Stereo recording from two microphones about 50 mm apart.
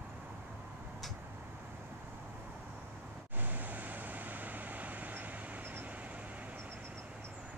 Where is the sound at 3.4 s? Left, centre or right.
Right.